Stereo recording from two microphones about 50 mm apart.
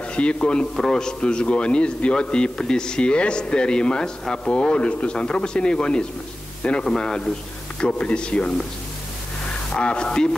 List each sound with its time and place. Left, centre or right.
0.1 s a man's voice: left